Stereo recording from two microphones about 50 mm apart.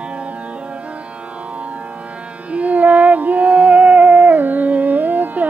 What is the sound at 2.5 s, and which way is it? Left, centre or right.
Music, right.